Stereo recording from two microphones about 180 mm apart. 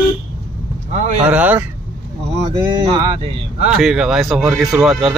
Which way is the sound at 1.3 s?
10° right (ahead or behind).